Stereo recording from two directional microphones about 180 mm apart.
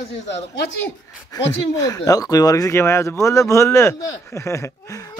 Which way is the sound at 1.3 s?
20° left (ahead or behind).